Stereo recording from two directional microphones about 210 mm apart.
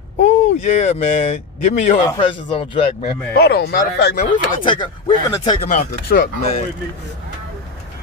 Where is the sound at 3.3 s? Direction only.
50° left (ahead or behind).